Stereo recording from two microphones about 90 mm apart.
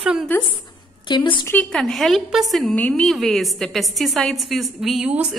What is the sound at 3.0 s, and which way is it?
A woman's voice, centre (ahead or behind).